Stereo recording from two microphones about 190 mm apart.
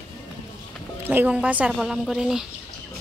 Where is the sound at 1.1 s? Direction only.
10° right (ahead or behind).